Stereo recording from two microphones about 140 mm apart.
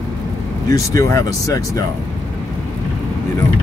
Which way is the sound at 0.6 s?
20° left (ahead or behind).